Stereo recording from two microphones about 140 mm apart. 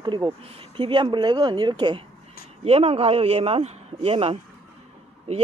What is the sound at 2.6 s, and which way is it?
Speech, 45° right (ahead or behind).